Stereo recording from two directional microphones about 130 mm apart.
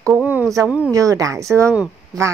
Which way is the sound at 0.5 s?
Centre (ahead or behind).